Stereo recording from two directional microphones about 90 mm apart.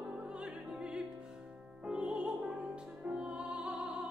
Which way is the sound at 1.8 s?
10° right (ahead or behind).